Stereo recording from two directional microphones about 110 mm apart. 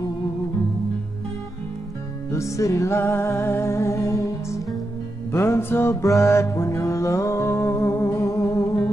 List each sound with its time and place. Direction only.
2.3 s music: 25° left (ahead or behind)